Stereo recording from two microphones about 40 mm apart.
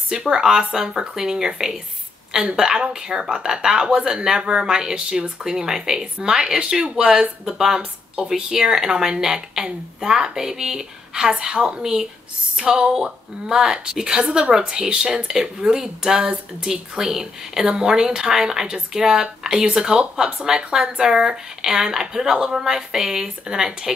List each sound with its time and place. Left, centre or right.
0.1 s speech: right
11.8 s speech: centre